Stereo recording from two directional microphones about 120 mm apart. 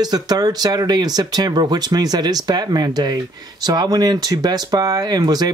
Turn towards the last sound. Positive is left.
turn(degrees=-35)  # may be behind; listen again after turning